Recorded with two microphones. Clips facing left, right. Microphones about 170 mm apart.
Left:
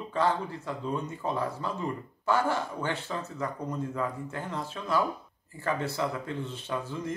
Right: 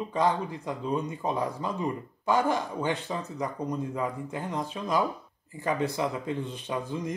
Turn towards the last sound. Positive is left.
turn(degrees=-15)  # may be behind; listen again after turning